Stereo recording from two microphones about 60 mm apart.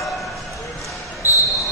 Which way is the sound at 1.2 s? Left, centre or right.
Right.